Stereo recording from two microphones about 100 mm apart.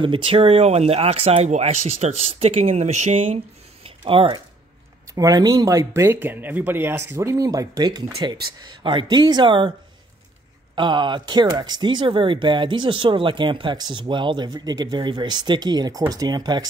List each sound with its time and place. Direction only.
0.0 s speech: 60° right (ahead or behind); by 2.7 s 85° right
3.8 s a sound: 70° right (ahead or behind)
5.1 s speech: 40° right (ahead or behind)
10.8 s speech: 50° right (ahead or behind)